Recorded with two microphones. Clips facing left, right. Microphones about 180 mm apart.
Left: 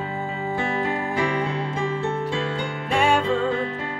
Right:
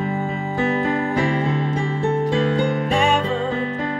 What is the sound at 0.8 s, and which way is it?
Music, 40° right (ahead or behind).